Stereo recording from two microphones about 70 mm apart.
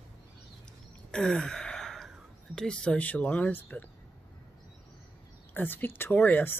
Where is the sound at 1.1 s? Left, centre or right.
Centre.